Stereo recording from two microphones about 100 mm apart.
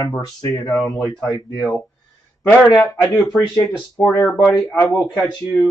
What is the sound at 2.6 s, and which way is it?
Speech, centre (ahead or behind).